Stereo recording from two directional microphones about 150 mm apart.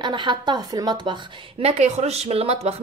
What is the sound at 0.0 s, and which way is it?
A woman's voice, 30° right (ahead or behind).